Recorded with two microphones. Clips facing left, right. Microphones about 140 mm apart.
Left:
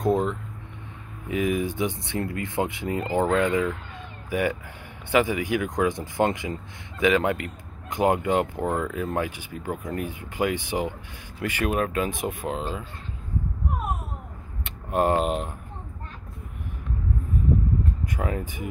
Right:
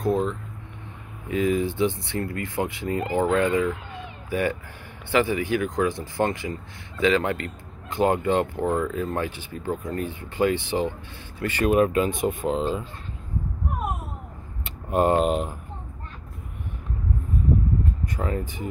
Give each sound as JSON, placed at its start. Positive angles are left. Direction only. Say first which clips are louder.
{"t": 0.0, "sound": "a sound", "louder": "left 1 dB", "side_deg": 20}
{"t": 1.3, "sound": "speech", "louder": "right 2 dB", "side_deg": 15}
{"t": 11.7, "sound": "speech", "louder": "right 9 dB", "side_deg": 0}
{"t": 14.6, "sound": "speech", "louder": "right 2 dB", "side_deg": 0}
{"t": 18.0, "sound": "speech", "louder": "right 1 dB", "side_deg": 10}